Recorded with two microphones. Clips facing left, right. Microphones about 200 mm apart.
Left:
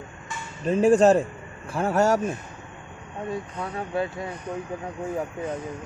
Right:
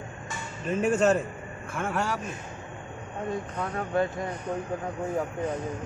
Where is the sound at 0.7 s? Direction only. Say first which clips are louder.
Left 6 dB; 35° left (ahead or behind).